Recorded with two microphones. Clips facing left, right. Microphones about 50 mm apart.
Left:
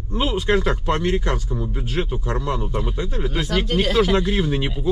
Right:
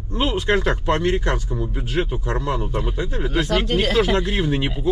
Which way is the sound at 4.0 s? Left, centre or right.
Right.